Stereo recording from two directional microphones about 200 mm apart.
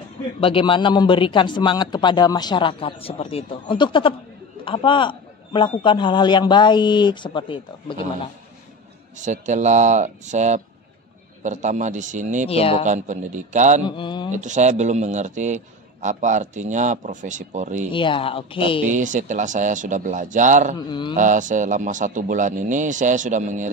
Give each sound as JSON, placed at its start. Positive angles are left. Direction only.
{"t": 0.4, "sound": "speech", "side_deg": 25}
{"t": 9.2, "sound": "a man's voice", "side_deg": -35}
{"t": 12.4, "sound": "speech", "side_deg": 30}
{"t": 12.8, "sound": "a man's voice", "side_deg": -35}
{"t": 13.8, "sound": "speech", "side_deg": 25}
{"t": 14.3, "sound": "a man's voice", "side_deg": -35}
{"t": 17.9, "sound": "speech", "side_deg": 25}
{"t": 18.9, "sound": "a man's voice", "side_deg": -40}